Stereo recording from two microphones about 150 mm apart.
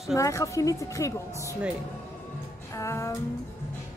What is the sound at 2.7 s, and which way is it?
Music, 20° left (ahead or behind).